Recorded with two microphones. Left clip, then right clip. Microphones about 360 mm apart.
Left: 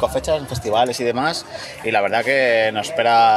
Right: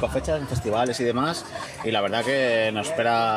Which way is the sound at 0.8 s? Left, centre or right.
Centre.